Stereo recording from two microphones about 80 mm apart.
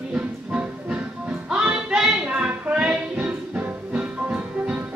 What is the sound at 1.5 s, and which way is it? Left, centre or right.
Music, centre.